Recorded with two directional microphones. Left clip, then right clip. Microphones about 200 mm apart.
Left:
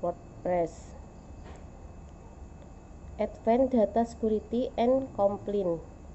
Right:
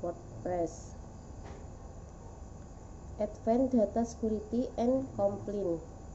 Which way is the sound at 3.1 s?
15° left (ahead or behind).